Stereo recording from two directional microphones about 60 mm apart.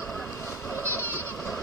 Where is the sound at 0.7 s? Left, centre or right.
Left.